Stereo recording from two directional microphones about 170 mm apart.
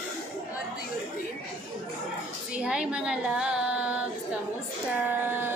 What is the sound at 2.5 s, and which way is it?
Child singing, 5° right (ahead or behind).